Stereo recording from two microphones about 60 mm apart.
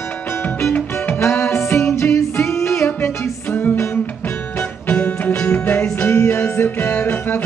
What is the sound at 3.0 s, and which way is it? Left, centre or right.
Music, left.